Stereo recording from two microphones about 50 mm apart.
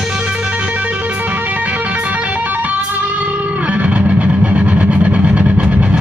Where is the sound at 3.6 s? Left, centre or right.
Right.